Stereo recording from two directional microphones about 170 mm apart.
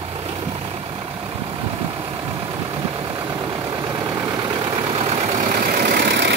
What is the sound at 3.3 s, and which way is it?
Vehicle, 25° right (ahead or behind).